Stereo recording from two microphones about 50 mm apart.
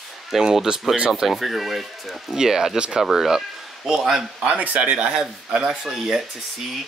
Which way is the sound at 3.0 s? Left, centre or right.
Centre.